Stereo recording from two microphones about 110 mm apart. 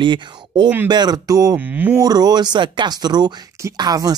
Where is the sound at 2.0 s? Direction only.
40° right (ahead or behind).